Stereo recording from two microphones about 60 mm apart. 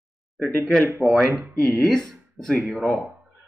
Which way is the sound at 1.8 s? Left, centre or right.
Centre.